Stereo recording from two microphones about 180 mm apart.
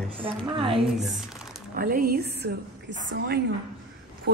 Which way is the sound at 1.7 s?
50° right (ahead or behind).